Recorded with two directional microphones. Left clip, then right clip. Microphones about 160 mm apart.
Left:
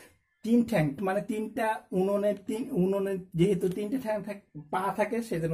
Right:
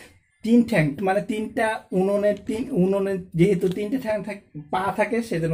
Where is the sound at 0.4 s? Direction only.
5° left (ahead or behind).